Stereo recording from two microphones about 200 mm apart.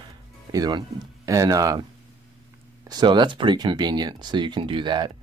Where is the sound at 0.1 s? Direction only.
20° right (ahead or behind).